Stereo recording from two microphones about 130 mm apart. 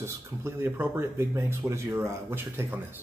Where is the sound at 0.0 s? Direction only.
20° right (ahead or behind).